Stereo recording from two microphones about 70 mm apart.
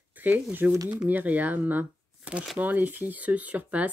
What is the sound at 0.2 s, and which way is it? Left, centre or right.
Speech, right.